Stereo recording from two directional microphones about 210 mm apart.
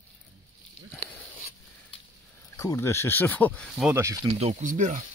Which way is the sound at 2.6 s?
15° left (ahead or behind).